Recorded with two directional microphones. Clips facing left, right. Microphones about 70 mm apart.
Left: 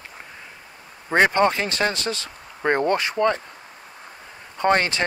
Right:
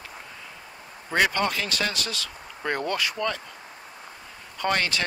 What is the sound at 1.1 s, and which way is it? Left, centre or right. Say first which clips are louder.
Speech: left 6 dB; left.